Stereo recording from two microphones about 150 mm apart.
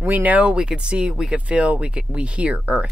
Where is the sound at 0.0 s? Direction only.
10° right (ahead or behind).